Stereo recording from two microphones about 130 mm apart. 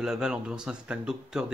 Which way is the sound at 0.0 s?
5° right (ahead or behind).